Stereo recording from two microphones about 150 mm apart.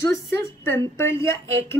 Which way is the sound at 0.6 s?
15° left (ahead or behind).